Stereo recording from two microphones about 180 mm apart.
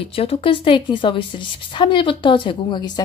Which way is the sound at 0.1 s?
30° left (ahead or behind).